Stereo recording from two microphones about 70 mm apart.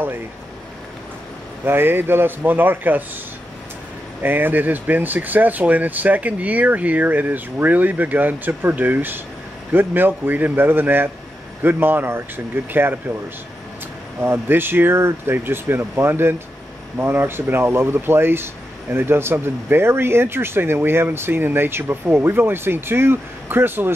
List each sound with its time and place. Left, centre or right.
1.6 s speech: right
4.2 s speech: right
14.2 s speech: right